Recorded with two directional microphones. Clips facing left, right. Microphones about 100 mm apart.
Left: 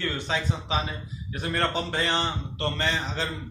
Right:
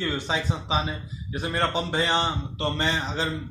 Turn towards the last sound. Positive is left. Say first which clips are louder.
# right 2 dB
turn(degrees=-15)  # may be behind; listen again after turning